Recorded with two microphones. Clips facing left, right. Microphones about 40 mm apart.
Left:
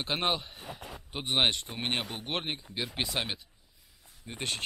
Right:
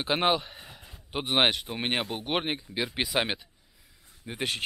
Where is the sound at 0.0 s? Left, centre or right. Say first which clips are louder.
Right 5 dB; centre.